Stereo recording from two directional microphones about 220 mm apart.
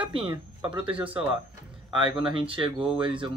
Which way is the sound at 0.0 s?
25° right (ahead or behind).